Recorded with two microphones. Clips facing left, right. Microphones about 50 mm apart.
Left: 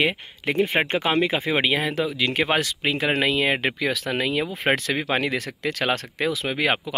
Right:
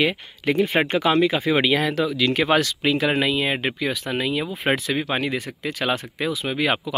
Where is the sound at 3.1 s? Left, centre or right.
Left.